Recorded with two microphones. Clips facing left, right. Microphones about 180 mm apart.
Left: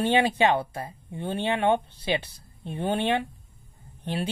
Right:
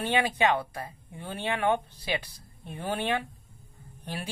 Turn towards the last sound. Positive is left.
turn(degrees=25)  # may be behind; listen again after turning